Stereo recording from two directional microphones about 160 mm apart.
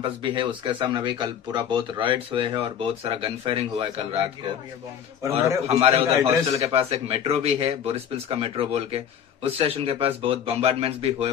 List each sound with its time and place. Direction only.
0.0 s speech: 30° right (ahead or behind)
5.3 s speech: 40° right (ahead or behind)